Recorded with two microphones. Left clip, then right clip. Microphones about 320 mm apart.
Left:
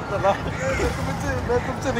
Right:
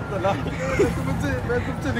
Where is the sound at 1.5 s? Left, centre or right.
Left.